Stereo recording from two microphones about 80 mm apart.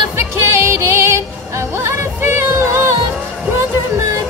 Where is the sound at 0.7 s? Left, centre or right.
Right.